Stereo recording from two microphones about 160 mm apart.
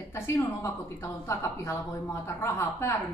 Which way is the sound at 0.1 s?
15° left (ahead or behind).